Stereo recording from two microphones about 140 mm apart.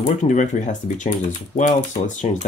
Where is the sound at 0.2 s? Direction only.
60° left (ahead or behind).